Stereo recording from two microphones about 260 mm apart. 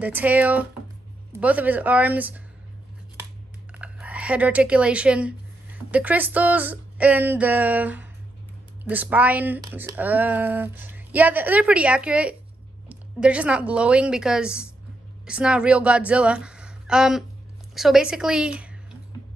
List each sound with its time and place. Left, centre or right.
0.0 s speech: centre
3.7 s a woman's voice: centre